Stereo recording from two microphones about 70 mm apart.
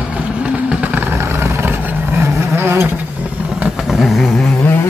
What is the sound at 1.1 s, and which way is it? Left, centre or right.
Vehicle, right.